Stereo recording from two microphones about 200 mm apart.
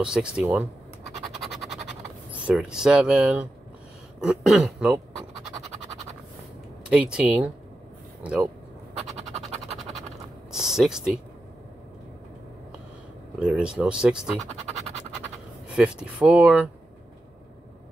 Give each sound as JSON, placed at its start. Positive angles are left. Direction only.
{"t": 0.0, "sound": "speech", "side_deg": -5}
{"t": 1.4, "sound": "scratch", "side_deg": 0}
{"t": 2.3, "sound": "speech", "side_deg": -5}
{"t": 6.9, "sound": "speech", "side_deg": -5}
{"t": 9.3, "sound": "a sound", "side_deg": -35}
{"t": 10.5, "sound": "a sound", "side_deg": -5}
{"t": 13.4, "sound": "speech", "side_deg": -5}
{"t": 15.7, "sound": "speech", "side_deg": -5}